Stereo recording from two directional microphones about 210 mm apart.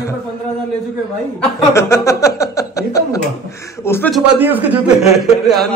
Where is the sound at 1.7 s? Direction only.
15° left (ahead or behind).